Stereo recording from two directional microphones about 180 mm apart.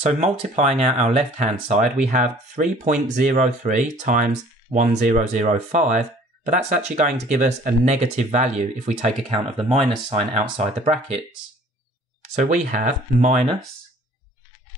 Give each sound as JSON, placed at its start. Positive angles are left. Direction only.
{"t": 0.0, "sound": "speech", "side_deg": -40}
{"t": 12.4, "sound": "speech", "side_deg": -45}